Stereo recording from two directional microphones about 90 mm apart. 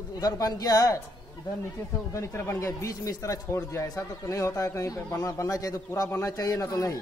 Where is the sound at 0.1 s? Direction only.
45° left (ahead or behind).